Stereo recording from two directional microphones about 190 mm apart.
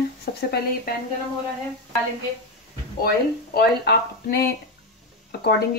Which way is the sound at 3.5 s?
55° left (ahead or behind).